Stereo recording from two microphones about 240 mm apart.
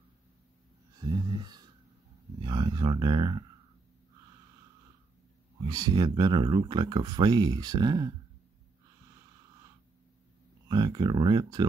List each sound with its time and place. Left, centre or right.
0.9 s a sound: centre
2.4 s speech: centre
5.7 s speech: centre
10.7 s speech: centre